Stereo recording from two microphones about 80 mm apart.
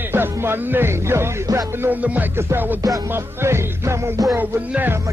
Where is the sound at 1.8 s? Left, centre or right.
Centre.